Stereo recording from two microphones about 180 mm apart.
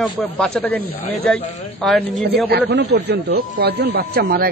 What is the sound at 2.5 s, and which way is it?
Speech, 70° right (ahead or behind).